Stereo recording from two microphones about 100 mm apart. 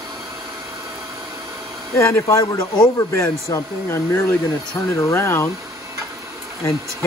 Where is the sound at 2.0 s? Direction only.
25° left (ahead or behind).